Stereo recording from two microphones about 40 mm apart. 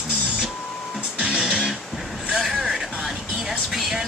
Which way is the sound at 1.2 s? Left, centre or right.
Right.